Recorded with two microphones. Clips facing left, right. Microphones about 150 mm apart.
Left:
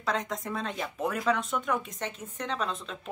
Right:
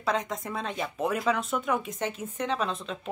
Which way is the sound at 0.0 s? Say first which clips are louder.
Right 2 dB; 5° right (ahead or behind).